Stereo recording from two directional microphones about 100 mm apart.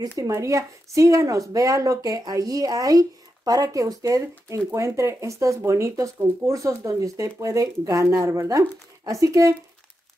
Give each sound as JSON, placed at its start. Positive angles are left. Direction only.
{"t": 0.2, "sound": "speech", "side_deg": -35}